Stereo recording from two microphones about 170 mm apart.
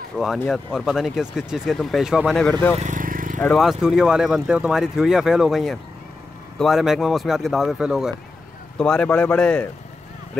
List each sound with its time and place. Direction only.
0.2 s speech: 5° right (ahead or behind)
2.8 s vehicle: 50° right (ahead or behind)
3.3 s speech: 5° left (ahead or behind)